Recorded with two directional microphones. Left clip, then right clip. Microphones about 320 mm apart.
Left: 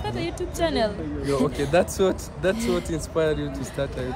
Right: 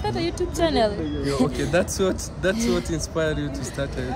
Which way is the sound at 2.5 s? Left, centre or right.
Centre.